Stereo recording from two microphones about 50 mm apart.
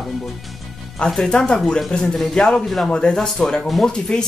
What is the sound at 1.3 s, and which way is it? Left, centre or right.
Speech, centre.